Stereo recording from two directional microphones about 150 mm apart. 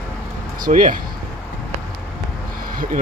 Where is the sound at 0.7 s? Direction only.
65° right (ahead or behind).